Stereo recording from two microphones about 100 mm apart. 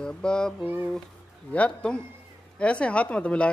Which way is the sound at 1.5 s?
10° left (ahead or behind).